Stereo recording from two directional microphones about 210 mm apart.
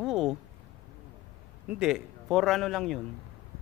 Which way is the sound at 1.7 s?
5° right (ahead or behind).